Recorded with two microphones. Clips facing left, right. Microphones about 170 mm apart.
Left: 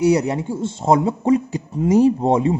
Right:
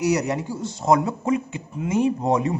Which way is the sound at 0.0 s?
30° left (ahead or behind).